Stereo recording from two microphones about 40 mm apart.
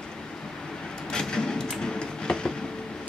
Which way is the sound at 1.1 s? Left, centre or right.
Centre.